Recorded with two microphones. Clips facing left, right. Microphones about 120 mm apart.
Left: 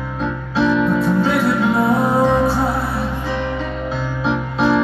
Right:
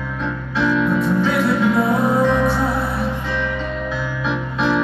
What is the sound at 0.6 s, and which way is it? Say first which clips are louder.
Music: left 2 dB; 25° left (ahead or behind).